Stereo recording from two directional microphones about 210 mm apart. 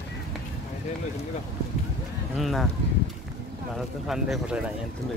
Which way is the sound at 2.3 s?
Centre (ahead or behind).